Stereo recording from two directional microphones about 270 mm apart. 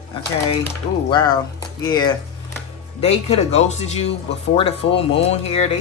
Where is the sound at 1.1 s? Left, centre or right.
Centre.